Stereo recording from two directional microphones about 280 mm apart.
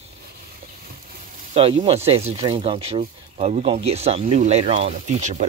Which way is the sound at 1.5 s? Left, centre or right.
Centre.